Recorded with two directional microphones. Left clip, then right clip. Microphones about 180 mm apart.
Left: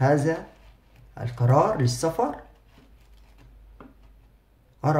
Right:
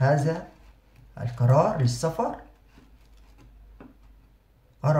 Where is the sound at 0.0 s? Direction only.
35° left (ahead or behind).